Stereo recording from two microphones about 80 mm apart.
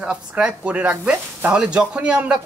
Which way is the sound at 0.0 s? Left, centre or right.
Centre.